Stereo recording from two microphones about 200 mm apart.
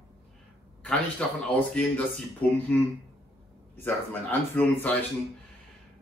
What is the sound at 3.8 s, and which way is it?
Speech, 10° left (ahead or behind).